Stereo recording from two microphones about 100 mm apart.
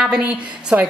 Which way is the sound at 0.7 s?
15° right (ahead or behind).